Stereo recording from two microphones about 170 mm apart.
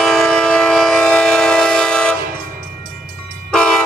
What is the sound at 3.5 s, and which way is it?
Train, 5° left (ahead or behind).